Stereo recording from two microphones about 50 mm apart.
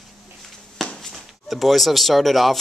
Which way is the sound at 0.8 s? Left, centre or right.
Centre.